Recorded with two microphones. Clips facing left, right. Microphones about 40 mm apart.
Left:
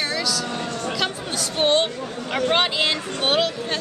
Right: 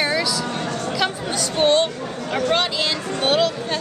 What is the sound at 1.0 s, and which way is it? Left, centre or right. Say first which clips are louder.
A woman's voice: right 3 dB; centre.